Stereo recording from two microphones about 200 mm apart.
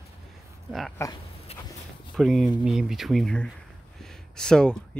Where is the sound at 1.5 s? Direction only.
30° left (ahead or behind).